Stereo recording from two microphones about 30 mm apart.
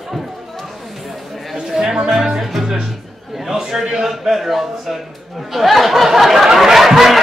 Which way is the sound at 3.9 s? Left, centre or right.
Centre.